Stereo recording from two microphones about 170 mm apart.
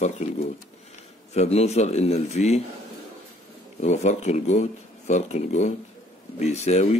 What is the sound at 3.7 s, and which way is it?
A man's voice, 40° left (ahead or behind).